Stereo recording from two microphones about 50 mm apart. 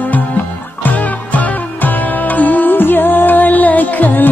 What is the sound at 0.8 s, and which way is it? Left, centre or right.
Music, left.